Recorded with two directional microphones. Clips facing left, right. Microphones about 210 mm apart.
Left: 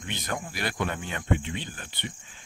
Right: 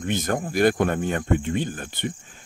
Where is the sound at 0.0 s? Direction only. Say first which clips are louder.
Right 9 dB; 50° right (ahead or behind).